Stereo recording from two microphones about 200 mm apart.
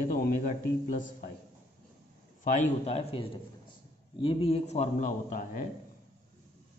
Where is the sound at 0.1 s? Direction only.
45° left (ahead or behind).